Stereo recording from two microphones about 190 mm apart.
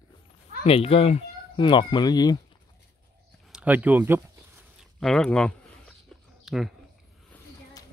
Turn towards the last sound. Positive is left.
turn(degrees=10)  # may be behind; listen again after turning